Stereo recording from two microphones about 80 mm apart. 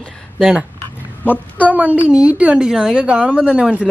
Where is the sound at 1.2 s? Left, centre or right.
Left.